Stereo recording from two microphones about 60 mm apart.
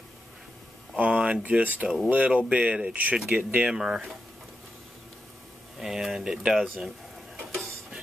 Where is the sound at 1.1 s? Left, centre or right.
Centre.